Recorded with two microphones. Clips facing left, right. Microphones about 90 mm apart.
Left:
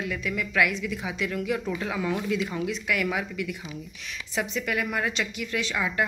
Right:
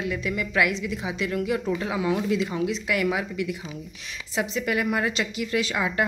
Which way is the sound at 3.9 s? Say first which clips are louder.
Even; 35° right (ahead or behind).